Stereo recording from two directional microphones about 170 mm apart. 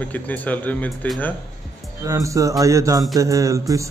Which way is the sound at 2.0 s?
20° right (ahead or behind).